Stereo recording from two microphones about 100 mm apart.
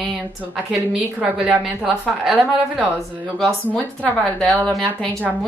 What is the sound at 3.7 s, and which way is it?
Speech, 10° left (ahead or behind).